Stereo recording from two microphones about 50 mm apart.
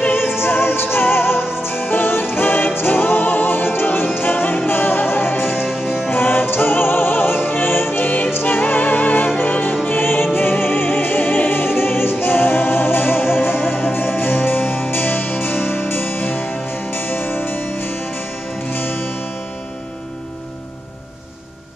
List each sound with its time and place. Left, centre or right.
0.0 s music: left
5.6 s music: centre
6.0 s music: left